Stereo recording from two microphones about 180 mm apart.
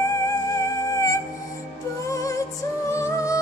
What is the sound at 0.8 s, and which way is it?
Music, 15° left (ahead or behind).